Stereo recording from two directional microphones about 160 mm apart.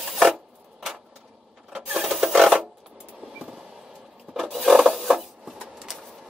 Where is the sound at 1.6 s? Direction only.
5° right (ahead or behind).